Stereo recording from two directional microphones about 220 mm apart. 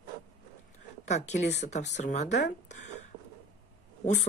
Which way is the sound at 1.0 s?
30° left (ahead or behind).